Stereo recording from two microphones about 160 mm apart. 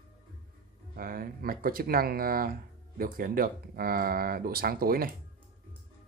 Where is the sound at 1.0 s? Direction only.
65° right (ahead or behind).